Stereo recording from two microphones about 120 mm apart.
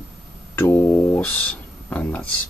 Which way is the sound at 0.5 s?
20° left (ahead or behind).